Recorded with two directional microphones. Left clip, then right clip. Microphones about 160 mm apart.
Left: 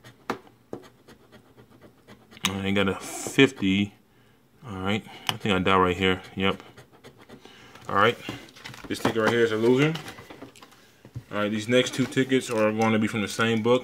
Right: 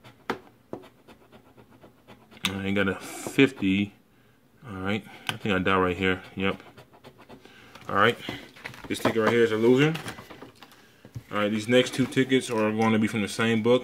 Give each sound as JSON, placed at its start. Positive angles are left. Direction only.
{"t": 2.4, "sound": "speech", "side_deg": 15}
{"t": 7.4, "sound": "a sound", "side_deg": 15}
{"t": 7.8, "sound": "speech", "side_deg": 0}
{"t": 11.2, "sound": "speech", "side_deg": 0}